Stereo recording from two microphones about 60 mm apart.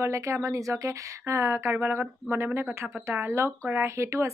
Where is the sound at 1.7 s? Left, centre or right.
Right.